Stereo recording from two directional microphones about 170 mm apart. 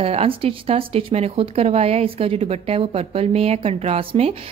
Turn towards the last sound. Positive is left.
turn(degrees=-35)  # may be behind; listen again after turning